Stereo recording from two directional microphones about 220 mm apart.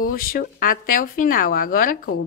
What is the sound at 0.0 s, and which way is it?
Speech, 40° left (ahead or behind).